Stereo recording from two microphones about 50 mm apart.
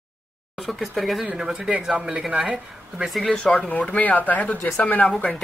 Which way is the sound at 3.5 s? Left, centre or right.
Left.